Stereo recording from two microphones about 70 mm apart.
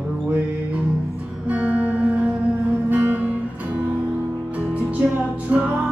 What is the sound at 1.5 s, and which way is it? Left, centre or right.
Music, centre.